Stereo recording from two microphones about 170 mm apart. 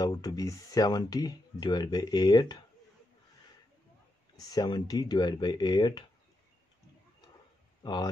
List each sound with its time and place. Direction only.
0.0 s speech: 20° left (ahead or behind)
4.4 s speech: 20° left (ahead or behind)
7.8 s speech: 25° left (ahead or behind)